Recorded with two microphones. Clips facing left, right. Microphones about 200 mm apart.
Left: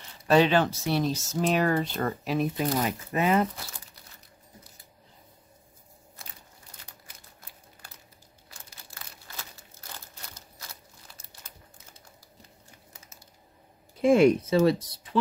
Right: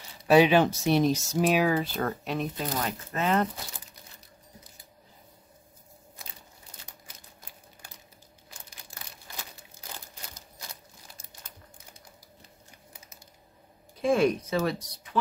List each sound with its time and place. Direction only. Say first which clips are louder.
0.3 s speech: right 2 dB; 15° right (ahead or behind)
2.5 s speech: left 4 dB; 15° left (ahead or behind)
14.1 s speech: left 5 dB; 25° left (ahead or behind)